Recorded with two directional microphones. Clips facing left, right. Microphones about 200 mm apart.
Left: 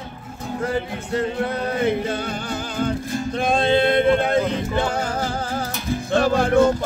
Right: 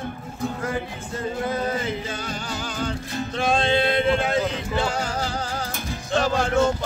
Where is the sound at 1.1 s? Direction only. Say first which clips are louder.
Left 4 dB; 65° left (ahead or behind).